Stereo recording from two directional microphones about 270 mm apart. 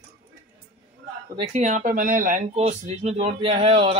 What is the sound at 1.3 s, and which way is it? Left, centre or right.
Speech, right.